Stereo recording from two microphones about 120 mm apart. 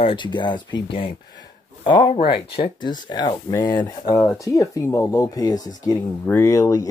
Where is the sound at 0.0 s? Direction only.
40° left (ahead or behind).